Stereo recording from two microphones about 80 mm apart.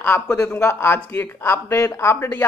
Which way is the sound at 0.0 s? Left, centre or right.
Left.